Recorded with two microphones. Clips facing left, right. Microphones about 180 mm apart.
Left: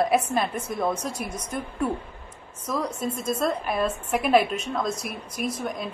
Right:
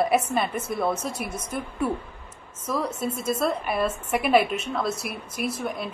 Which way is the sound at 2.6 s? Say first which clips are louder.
Right 1 dB; 5° right (ahead or behind).